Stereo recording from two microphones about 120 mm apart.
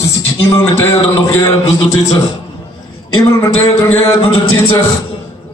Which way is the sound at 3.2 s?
25° left (ahead or behind).